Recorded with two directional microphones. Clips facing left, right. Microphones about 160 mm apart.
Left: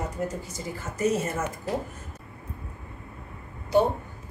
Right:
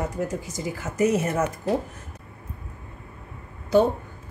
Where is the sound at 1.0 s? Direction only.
90° right.